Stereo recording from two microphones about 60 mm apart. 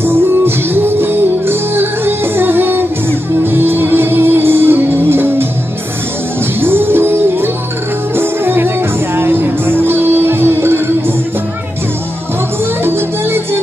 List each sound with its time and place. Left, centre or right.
0.0 s music: right
6.6 s music: right
12.8 s music: right